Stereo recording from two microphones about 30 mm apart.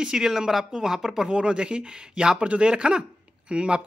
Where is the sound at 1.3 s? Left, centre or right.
Right.